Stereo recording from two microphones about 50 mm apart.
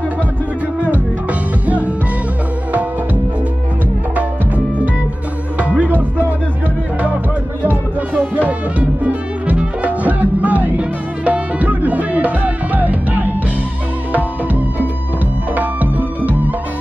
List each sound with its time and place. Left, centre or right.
5.6 s music: right
8.1 s music: right